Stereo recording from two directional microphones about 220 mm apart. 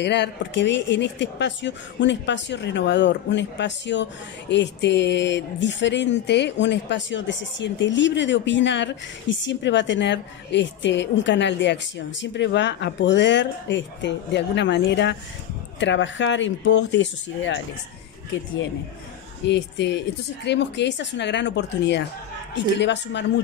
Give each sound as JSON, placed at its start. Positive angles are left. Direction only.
{"t": 0.0, "sound": "speech", "side_deg": 50}
{"t": 19.4, "sound": "speech", "side_deg": 50}